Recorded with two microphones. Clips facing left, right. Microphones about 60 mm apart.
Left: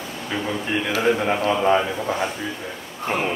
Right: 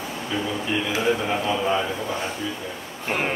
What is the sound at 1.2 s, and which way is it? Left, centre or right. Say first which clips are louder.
Speech: left 4 dB; left.